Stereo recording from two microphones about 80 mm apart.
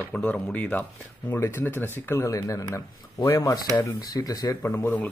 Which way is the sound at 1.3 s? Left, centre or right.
Left.